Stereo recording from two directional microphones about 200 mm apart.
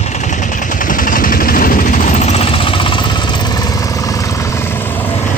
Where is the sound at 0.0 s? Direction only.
35° left (ahead or behind); by 5.1 s 10° left (ahead or behind).